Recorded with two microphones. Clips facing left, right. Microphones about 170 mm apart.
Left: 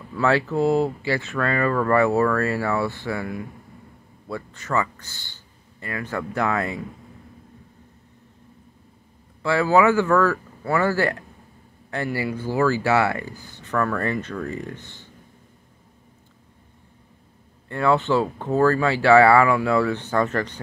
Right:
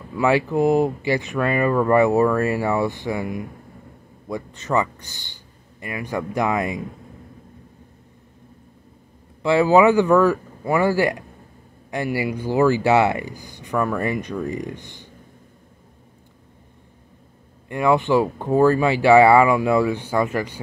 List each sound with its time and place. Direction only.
0.1 s speech: 15° right (ahead or behind)
9.4 s speech: 15° right (ahead or behind)
17.6 s speech: 15° right (ahead or behind)